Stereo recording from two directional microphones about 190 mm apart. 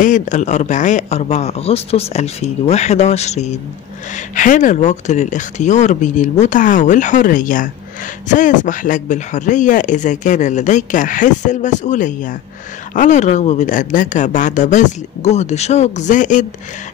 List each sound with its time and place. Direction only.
0.0 s speech: 40° left (ahead or behind)